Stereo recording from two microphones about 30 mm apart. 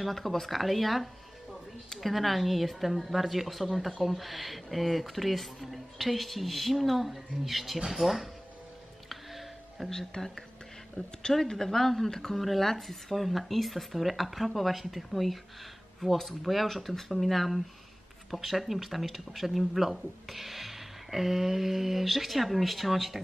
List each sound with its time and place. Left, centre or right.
0.0 s speech: centre
9.1 s music: centre
9.8 s a woman's voice: centre
11.0 s speech: left
11.4 s a woman's voice: centre
12.4 s speech: centre